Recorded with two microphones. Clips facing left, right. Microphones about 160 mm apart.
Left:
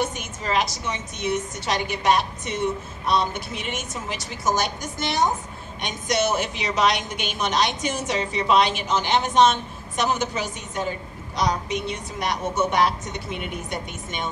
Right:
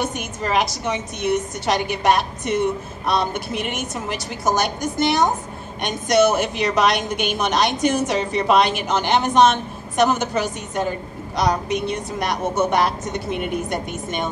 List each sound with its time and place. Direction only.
0.0 s a woman's voice: 60° right (ahead or behind)